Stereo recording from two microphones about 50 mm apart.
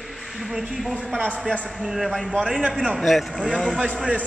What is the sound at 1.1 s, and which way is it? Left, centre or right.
Speech, right.